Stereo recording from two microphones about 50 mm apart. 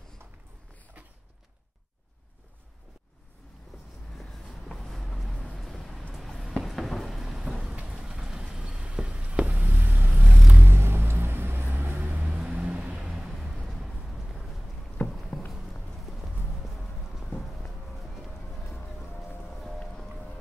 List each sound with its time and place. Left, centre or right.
4.2 s vehicle: centre
6.1 s a sound: centre
7.8 s vehicle: centre
8.9 s a sound: right
10.1 s vehicle: right
10.6 s vehicle: right
12.3 s vehicle: centre
13.0 s music: centre
13.7 s vehicle: centre
15.0 s a sound: centre
15.9 s clip-clop: centre
17.4 s music: centre
18.9 s music: centre
19.8 s music: centre